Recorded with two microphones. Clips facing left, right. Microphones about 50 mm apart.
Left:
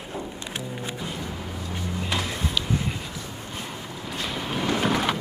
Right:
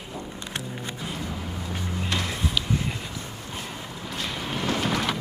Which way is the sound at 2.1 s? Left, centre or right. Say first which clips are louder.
Even; centre.